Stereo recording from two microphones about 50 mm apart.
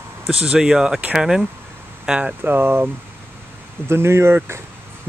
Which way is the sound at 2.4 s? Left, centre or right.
Right.